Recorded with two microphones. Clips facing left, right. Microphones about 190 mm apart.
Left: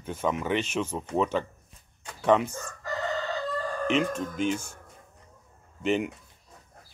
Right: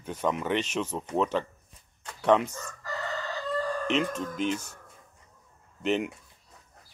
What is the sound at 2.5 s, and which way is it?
Chicken, 25° left (ahead or behind).